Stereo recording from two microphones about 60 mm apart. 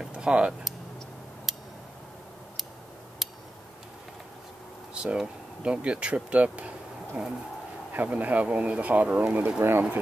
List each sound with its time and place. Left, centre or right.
0.0 s speech: centre
1.5 s tick: centre
5.0 s speech: centre
7.9 s speech: right
9.6 s speech: right